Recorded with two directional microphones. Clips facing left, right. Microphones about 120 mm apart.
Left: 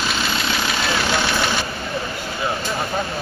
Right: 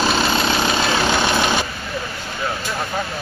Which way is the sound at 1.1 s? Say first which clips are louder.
Right 3 dB; 15° right (ahead or behind).